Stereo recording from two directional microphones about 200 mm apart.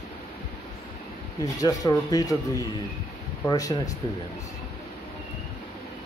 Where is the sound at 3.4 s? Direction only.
15° left (ahead or behind).